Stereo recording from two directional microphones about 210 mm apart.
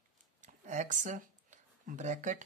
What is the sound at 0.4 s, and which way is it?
Speech, 35° right (ahead or behind).